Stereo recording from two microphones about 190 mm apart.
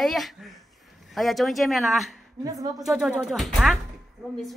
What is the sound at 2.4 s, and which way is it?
Speech, 20° right (ahead or behind).